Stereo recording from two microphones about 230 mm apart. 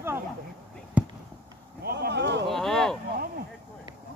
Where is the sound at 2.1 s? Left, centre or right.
Right.